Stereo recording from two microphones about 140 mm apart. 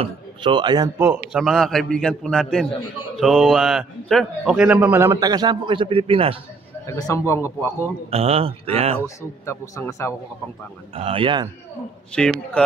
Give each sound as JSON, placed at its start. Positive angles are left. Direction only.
{"t": 0.0, "sound": "a man's voice", "side_deg": -35}
{"t": 0.9, "sound": "a man's voice", "side_deg": -10}
{"t": 1.4, "sound": "a man's voice", "side_deg": 0}
{"t": 5.2, "sound": "a man's voice", "side_deg": -30}
{"t": 6.9, "sound": "a man's voice", "side_deg": 25}
{"t": 8.1, "sound": "speech", "side_deg": -45}
{"t": 9.0, "sound": "a man's voice", "side_deg": 20}
{"t": 11.0, "sound": "a man's voice", "side_deg": -40}
{"t": 12.2, "sound": "a man's voice", "side_deg": 5}